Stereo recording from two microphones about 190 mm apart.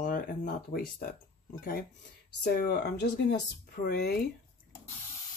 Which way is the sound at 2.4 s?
55° left (ahead or behind).